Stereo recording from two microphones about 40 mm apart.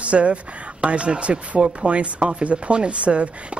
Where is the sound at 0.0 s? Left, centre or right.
Right.